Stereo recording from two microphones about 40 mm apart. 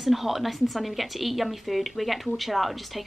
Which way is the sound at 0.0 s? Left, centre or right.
Centre.